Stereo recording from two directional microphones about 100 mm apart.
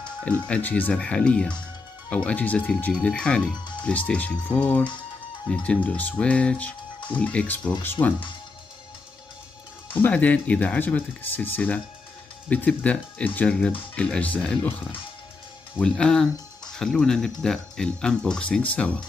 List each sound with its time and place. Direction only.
0.2 s speech: 15° left (ahead or behind)
9.8 s speech: 15° left (ahead or behind)
15.8 s speech: 10° left (ahead or behind)